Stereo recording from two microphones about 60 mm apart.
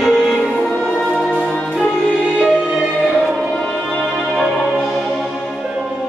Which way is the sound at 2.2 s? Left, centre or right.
Right.